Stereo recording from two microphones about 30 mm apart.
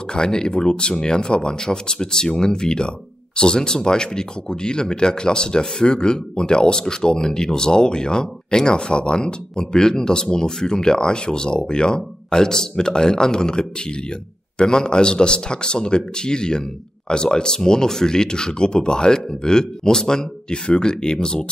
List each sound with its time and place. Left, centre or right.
0.1 s speech: left